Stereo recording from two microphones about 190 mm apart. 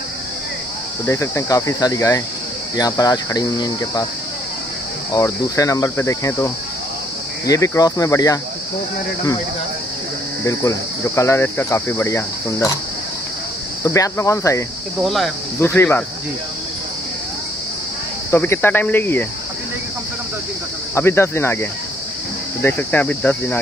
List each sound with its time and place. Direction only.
1.0 s speech: 15° left (ahead or behind)
5.1 s speech: 15° left (ahead or behind)
10.4 s speech: 15° left (ahead or behind)
13.8 s speech: 15° left (ahead or behind)
15.0 s speech: centre (ahead or behind)
15.6 s speech: 10° left (ahead or behind)
18.3 s speech: 10° left (ahead or behind)
20.9 s speech: 15° left (ahead or behind)